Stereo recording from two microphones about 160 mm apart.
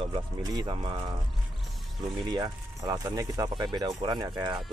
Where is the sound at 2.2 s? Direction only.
25° right (ahead or behind).